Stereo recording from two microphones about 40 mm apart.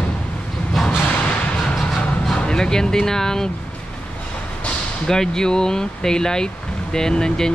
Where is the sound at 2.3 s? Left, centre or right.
Centre.